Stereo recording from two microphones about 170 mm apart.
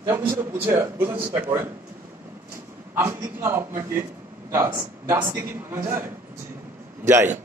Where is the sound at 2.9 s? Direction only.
15° right (ahead or behind).